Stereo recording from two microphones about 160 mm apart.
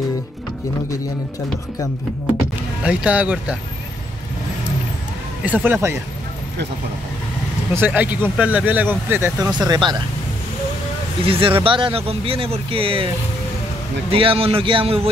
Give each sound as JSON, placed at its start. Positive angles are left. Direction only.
{"t": 2.8, "sound": "speech", "side_deg": -5}
{"t": 5.4, "sound": "speech", "side_deg": -10}
{"t": 7.7, "sound": "speech", "side_deg": -10}
{"t": 9.5, "sound": "speech", "side_deg": -25}
{"t": 11.2, "sound": "speech", "side_deg": -35}
{"t": 14.1, "sound": "speech", "side_deg": -35}